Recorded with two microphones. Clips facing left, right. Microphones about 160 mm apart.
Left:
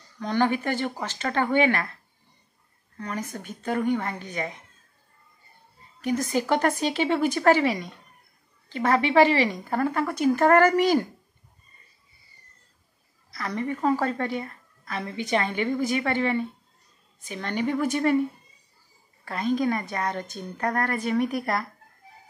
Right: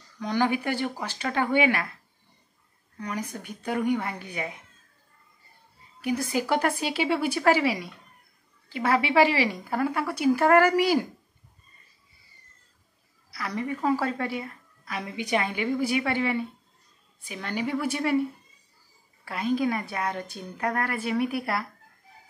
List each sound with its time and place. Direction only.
0.2 s a woman's voice: 10° right (ahead or behind)
3.0 s a woman's voice: 15° right (ahead or behind)
5.9 s a woman's voice: 10° right (ahead or behind)
13.3 s a woman's voice: 10° right (ahead or behind)
19.2 s a woman's voice: 10° right (ahead or behind)